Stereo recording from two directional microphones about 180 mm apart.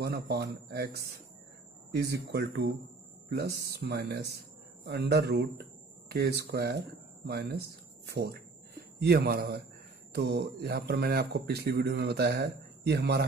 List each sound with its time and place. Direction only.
0.0 s speech: 65° right (ahead or behind)